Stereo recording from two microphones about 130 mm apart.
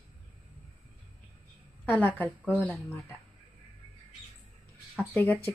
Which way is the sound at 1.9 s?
15° left (ahead or behind).